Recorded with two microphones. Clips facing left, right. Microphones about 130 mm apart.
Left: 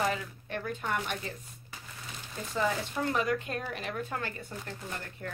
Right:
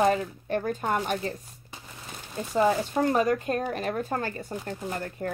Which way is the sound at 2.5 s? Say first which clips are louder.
Right 8 dB; 40° right (ahead or behind).